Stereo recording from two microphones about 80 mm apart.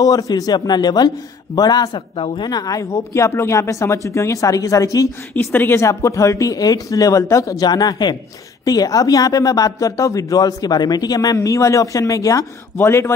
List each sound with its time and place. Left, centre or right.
0.0 s a man's voice: left
2.1 s speech: left
2.5 s speech: left
5.3 s speech: left
5.9 s speech: left
7.6 s a man's voice: left
11.4 s speech: left
12.7 s speech: left